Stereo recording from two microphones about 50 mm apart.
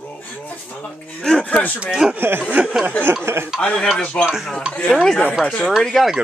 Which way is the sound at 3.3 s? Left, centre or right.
Right.